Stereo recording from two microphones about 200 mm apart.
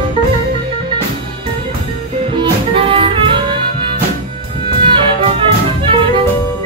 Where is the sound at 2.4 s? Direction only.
25° right (ahead or behind).